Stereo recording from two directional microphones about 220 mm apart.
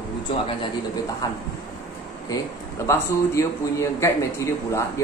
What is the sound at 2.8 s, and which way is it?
A man's voice, 10° left (ahead or behind).